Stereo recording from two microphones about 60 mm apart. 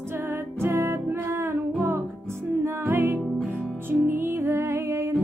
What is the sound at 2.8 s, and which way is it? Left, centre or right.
Music, right.